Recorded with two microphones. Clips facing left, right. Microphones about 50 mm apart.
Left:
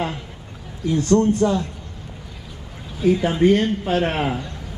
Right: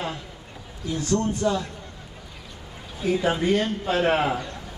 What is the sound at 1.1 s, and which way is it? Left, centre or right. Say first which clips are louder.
Speech: left 6 dB; left.